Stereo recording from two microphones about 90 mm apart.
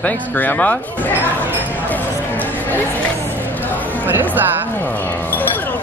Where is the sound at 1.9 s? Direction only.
20° left (ahead or behind).